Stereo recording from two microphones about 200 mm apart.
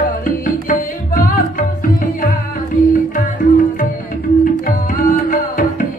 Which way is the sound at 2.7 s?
40° left (ahead or behind).